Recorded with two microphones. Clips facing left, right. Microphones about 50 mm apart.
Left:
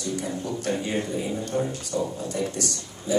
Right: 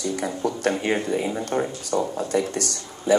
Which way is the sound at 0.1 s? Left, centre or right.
Right.